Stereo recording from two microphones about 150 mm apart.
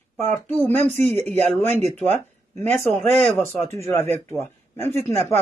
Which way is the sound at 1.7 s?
45° right (ahead or behind).